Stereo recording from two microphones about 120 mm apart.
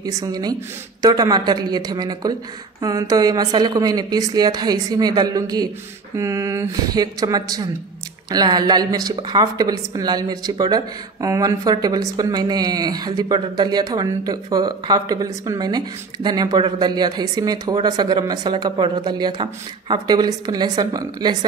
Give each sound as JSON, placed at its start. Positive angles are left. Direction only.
{"t": 0.0, "sound": "speech", "side_deg": -30}